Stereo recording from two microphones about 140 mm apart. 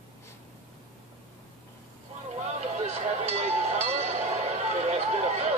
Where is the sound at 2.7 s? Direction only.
50° right (ahead or behind).